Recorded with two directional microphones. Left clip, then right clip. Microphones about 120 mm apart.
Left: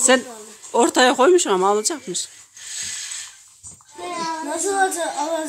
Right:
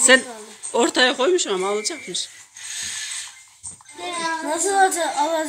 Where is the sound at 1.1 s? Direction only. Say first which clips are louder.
Left 5 dB; 70° left (ahead or behind).